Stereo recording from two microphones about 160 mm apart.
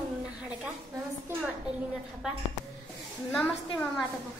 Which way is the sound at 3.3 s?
10° left (ahead or behind).